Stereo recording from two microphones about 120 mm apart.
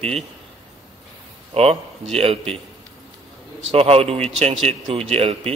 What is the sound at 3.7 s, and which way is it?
Speech, 55° right (ahead or behind).